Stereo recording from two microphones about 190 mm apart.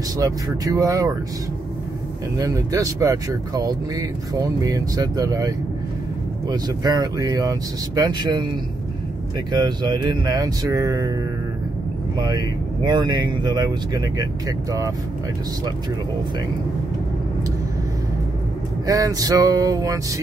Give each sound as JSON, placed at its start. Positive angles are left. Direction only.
{"t": 0.2, "sound": "speech", "side_deg": -20}
{"t": 2.3, "sound": "speech", "side_deg": -15}
{"t": 6.5, "sound": "speech", "side_deg": -20}
{"t": 9.5, "sound": "speech", "side_deg": -25}
{"t": 12.2, "sound": "speech", "side_deg": -20}
{"t": 18.9, "sound": "vehicle", "side_deg": -20}